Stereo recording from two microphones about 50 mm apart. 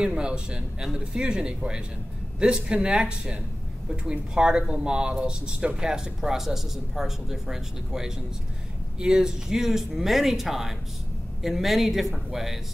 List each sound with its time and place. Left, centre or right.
0.0 s speech: centre